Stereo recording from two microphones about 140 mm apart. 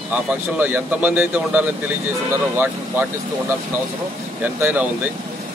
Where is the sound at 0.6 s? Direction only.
10° right (ahead or behind).